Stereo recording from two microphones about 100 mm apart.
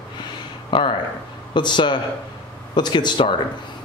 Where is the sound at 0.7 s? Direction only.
55° left (ahead or behind).